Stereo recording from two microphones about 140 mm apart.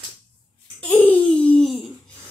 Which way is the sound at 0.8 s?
10° left (ahead or behind).